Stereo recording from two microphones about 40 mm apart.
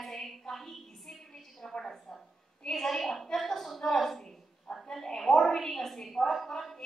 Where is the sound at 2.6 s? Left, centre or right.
Centre.